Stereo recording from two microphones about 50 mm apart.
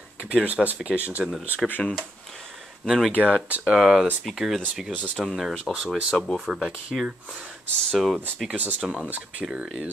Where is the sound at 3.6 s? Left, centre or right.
Centre.